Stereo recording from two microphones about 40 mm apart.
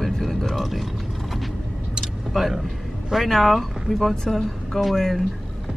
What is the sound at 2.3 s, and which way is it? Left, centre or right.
Speech, centre.